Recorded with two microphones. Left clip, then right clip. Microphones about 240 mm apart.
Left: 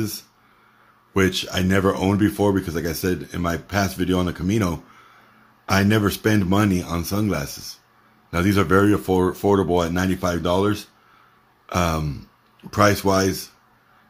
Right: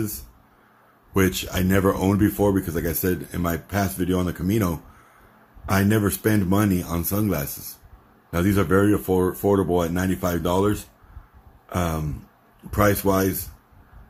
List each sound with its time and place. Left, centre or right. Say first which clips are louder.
1.1 s speech: left 2 dB; centre